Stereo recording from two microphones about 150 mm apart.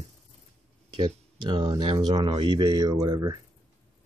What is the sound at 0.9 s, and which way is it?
Speech, 30° right (ahead or behind).